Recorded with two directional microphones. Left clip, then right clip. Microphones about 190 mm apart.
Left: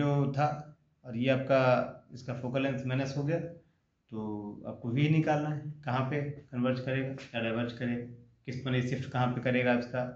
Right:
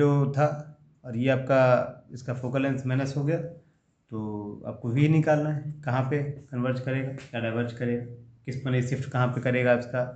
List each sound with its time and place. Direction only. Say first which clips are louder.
0.0 s a man's voice: right 6 dB; 35° right (ahead or behind)